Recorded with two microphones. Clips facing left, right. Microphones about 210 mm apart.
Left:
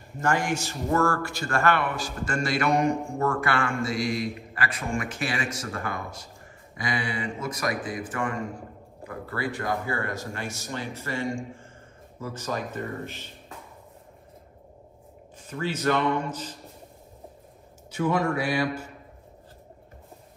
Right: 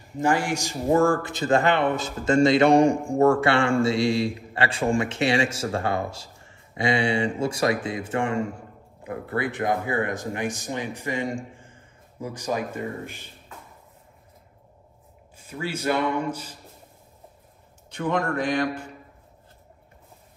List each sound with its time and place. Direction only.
0.2 s speech: 10° right (ahead or behind)
15.3 s speech: 10° right (ahead or behind)
17.9 s a man's voice: 5° left (ahead or behind)